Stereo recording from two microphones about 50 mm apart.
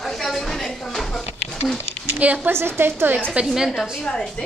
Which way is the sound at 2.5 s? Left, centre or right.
Right.